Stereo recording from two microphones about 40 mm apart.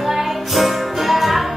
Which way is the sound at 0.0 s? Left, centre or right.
Centre.